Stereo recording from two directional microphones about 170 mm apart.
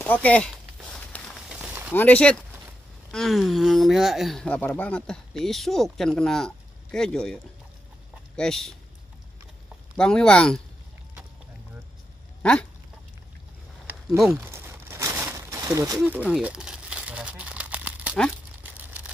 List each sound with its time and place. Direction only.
0.0 s speech: 10° left (ahead or behind)
1.1 s walk: 10° left (ahead or behind)
1.5 s a sound: 10° right (ahead or behind)
2.0 s speech: 10° left (ahead or behind)
8.4 s speech: 5° left (ahead or behind)
9.9 s speech: 5° left (ahead or behind)
14.3 s crumpling: 15° right (ahead or behind)
16.0 s crumpling: 5° right (ahead or behind)